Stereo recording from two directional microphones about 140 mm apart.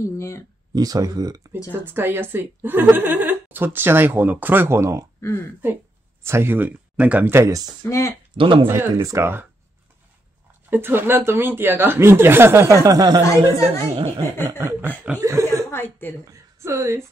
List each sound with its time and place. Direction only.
0.0 s speech: 20° left (ahead or behind)
0.7 s speech: 25° right (ahead or behind)
1.7 s speech: 15° right (ahead or behind)
7.9 s speech: 20° left (ahead or behind)
8.4 s speech: 35° right (ahead or behind)
8.6 s speech: 20° right (ahead or behind)
10.7 s speech: 15° right (ahead or behind)
13.5 s a woman's voice: 50° right (ahead or behind)
14.6 s speech: 15° right (ahead or behind)
15.5 s a woman's voice: 15° left (ahead or behind)
16.3 s a woman's voice: 20° right (ahead or behind)